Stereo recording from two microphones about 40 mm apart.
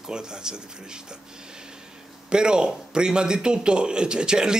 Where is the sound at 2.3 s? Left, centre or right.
Right.